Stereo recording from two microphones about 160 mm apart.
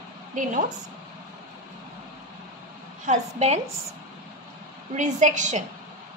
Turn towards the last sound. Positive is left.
turn(degrees=-50)  # may be behind; listen again after turning